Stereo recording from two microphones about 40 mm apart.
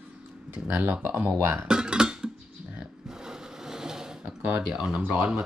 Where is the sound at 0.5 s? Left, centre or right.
Right.